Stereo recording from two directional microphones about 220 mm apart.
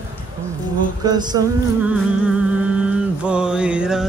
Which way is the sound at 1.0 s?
20° right (ahead or behind).